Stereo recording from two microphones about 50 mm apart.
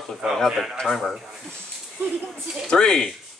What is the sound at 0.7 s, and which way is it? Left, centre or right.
Speech, centre.